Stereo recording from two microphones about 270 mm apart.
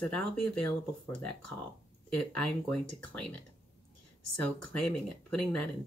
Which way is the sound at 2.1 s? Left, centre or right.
Centre.